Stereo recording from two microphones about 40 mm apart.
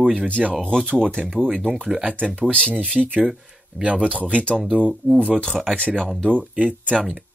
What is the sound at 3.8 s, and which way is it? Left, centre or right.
Speech, right.